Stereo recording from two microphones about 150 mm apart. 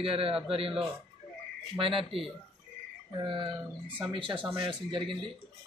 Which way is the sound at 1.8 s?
35° right (ahead or behind).